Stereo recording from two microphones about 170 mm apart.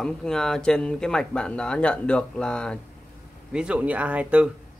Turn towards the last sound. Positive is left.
turn(degrees=-5)  # may be behind; listen again after turning